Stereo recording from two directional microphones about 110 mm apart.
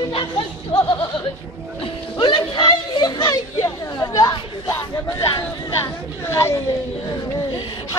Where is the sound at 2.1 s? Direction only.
50° left (ahead or behind).